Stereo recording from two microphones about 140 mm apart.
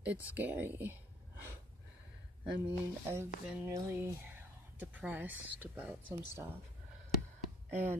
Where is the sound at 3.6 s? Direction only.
20° right (ahead or behind).